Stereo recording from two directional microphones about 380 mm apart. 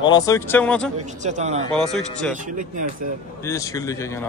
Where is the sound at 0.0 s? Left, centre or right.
Centre.